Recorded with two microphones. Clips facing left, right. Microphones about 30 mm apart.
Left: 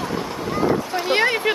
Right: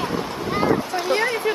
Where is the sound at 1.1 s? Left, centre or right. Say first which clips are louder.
Left 3 dB; left.